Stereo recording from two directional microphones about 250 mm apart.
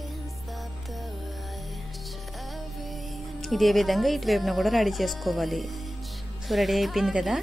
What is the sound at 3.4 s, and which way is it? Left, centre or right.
Speech, centre.